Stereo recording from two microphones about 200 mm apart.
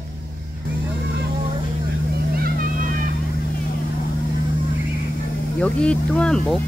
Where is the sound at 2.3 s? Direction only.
45° right (ahead or behind).